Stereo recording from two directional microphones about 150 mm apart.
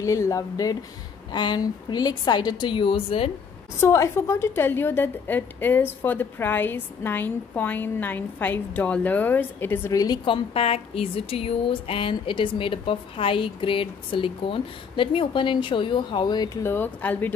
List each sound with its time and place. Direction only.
0.0 s a woman's voice: 20° left (ahead or behind); by 3.3 s 40° left (ahead or behind)
3.8 s a woman's voice: 20° left (ahead or behind)
16.6 s speech: 15° left (ahead or behind)